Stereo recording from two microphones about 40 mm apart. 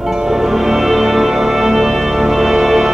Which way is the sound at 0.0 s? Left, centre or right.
Centre.